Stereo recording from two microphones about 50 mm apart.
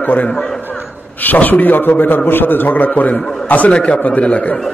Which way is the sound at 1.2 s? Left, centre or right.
Left.